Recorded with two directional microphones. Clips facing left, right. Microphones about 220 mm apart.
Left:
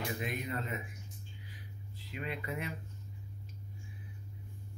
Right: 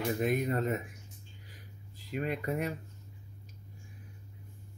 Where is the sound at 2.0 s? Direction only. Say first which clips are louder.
Right 7 dB; 45° right (ahead or behind).